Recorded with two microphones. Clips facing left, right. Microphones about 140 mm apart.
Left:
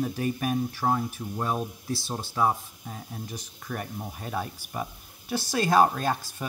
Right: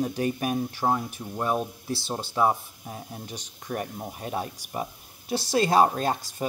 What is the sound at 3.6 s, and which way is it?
Speech, 35° right (ahead or behind).